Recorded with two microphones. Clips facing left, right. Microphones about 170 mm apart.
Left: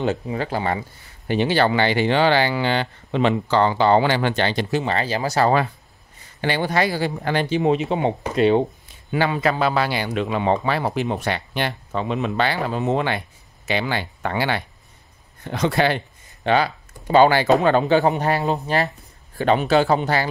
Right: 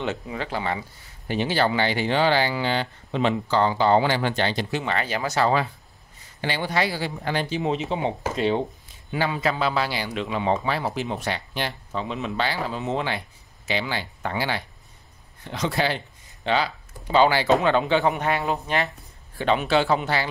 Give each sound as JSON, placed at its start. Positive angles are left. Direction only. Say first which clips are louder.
{"t": 0.0, "sound": "speech", "louder": "left 5 dB", "side_deg": 40}
{"t": 1.2, "sound": "speech", "louder": "left 4 dB", "side_deg": 65}
{"t": 4.6, "sound": "speech", "louder": "left 4 dB", "side_deg": 35}
{"t": 6.4, "sound": "speech", "louder": "left 4 dB", "side_deg": 50}